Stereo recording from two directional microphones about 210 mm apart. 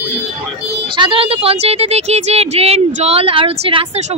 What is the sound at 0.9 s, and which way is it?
Speech, 25° right (ahead or behind).